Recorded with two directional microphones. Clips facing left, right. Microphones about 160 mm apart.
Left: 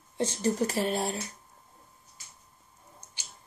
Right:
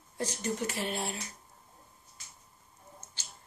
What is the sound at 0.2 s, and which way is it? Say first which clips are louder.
Speech: left 6 dB; 30° left (ahead or behind).